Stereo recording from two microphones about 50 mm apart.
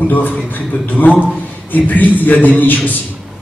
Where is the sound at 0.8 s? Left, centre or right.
Left.